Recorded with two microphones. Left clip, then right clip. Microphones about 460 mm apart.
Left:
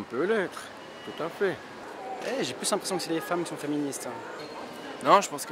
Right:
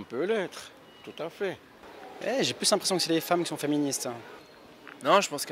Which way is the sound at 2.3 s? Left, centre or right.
Right.